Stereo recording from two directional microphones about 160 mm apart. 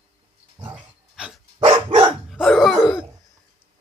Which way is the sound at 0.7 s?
5° right (ahead or behind).